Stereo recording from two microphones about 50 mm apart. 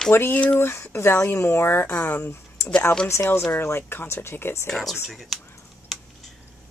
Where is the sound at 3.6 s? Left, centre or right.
Left.